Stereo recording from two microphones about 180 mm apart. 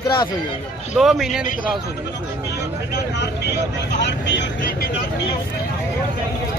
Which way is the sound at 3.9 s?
75° left (ahead or behind).